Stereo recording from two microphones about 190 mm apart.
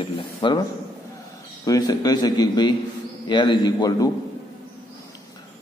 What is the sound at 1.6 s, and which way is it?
A man's voice, 20° left (ahead or behind).